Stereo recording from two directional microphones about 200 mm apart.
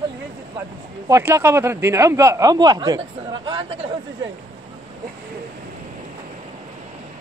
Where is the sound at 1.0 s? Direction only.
15° right (ahead or behind).